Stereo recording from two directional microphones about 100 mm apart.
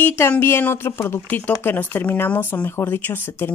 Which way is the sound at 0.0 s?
25° left (ahead or behind).